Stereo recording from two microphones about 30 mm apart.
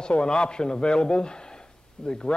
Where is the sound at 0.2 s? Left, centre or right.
Left.